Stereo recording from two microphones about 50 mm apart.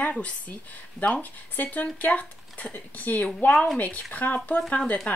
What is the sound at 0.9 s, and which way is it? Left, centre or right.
Speech, left.